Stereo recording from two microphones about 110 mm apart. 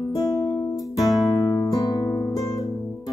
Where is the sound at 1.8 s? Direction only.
35° left (ahead or behind).